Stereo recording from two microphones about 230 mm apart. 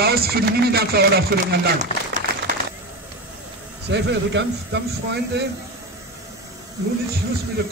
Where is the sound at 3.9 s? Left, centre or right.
Right.